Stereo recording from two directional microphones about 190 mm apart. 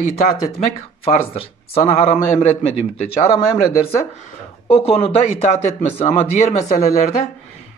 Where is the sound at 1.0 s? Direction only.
30° left (ahead or behind).